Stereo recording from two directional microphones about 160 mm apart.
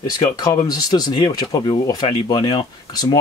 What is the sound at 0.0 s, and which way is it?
Speech, 25° left (ahead or behind).